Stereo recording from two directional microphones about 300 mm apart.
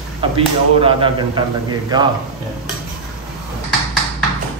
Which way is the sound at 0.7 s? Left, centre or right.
Centre.